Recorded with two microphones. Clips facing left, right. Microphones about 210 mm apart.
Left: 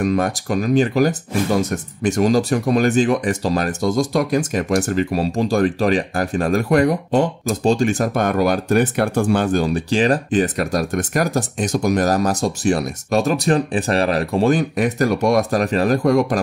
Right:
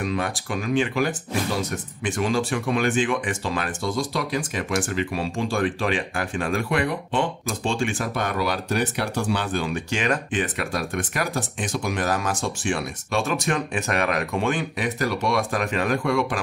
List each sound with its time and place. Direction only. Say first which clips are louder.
0.0 s speech: left 7 dB; 45° left (ahead or behind)